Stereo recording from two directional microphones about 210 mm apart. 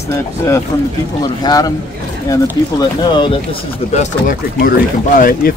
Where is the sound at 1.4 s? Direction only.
20° left (ahead or behind).